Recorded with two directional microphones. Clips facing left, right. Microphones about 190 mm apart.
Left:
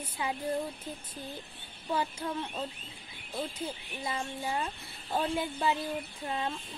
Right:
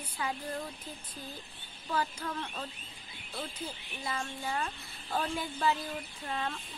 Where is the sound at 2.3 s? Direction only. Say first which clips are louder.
Left 3 dB; 15° left (ahead or behind).